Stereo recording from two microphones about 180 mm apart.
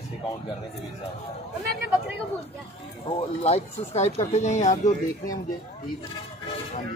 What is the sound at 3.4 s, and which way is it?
Speech, 35° left (ahead or behind).